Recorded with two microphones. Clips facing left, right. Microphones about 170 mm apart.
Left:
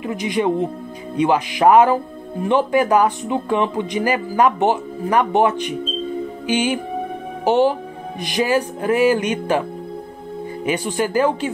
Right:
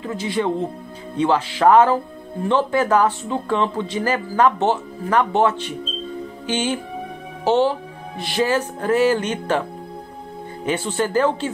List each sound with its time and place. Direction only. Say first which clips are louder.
0.0 s speech: left 2 dB; 15° left (ahead or behind)